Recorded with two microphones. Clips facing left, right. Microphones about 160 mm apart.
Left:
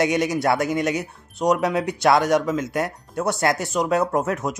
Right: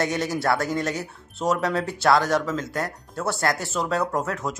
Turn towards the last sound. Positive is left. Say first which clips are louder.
# left 4 dB
turn(degrees=20)  # may be behind; listen again after turning